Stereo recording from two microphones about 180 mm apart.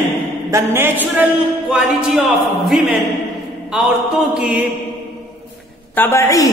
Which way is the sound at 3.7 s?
5° right (ahead or behind).